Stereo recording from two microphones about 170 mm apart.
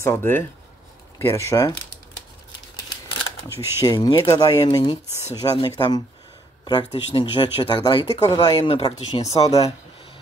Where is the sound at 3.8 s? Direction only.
25° left (ahead or behind); by 9.7 s 40° left (ahead or behind).